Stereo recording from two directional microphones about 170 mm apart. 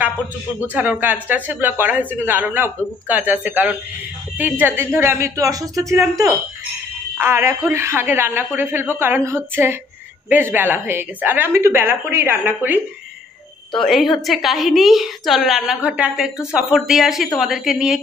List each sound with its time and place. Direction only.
0.6 s speech: 10° right (ahead or behind)
13.7 s a woman's voice: centre (ahead or behind)